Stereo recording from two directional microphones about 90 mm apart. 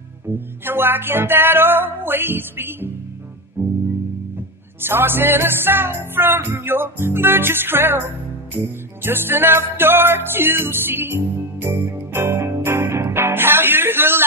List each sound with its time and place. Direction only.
0.3 s music: 25° right (ahead or behind)
4.8 s music: 25° right (ahead or behind)